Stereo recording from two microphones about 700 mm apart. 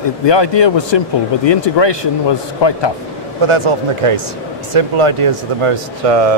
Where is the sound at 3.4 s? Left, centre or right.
Right.